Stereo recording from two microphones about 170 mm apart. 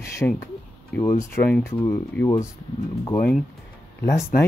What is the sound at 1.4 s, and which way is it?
Speech, 5° left (ahead or behind).